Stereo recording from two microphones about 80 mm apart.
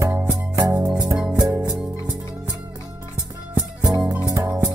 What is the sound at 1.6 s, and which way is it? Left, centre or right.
Music, centre.